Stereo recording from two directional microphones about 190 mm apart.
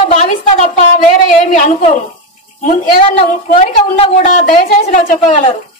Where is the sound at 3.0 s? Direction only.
30° left (ahead or behind).